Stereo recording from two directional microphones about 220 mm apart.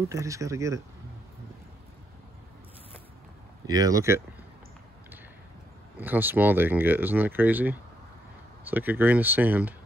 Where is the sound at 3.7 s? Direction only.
15° right (ahead or behind).